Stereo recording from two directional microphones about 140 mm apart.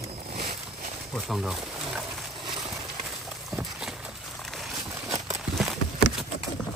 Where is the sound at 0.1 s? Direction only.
50° right (ahead or behind).